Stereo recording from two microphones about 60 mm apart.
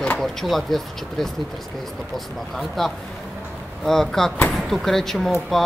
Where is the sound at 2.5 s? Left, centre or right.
Centre.